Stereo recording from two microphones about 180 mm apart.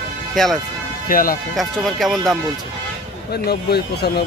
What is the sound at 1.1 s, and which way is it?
Speech, 50° left (ahead or behind).